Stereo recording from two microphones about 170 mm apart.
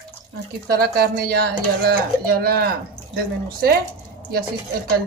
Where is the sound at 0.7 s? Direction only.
65° right (ahead or behind).